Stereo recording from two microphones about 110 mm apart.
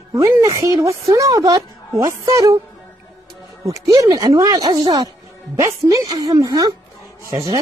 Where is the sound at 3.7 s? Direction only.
30° right (ahead or behind).